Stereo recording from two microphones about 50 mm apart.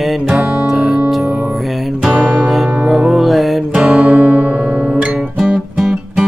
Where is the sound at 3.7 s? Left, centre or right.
Right.